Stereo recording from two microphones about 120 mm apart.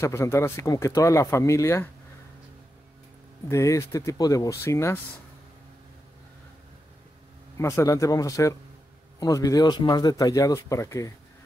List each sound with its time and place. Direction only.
0.0 s speech: 25° left (ahead or behind)
3.4 s speech: 25° left (ahead or behind)
7.5 s speech: 25° left (ahead or behind)